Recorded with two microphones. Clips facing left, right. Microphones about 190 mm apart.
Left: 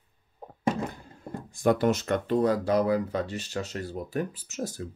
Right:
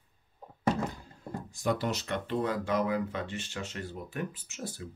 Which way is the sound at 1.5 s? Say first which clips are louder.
Left 8 dB; 55° left (ahead or behind).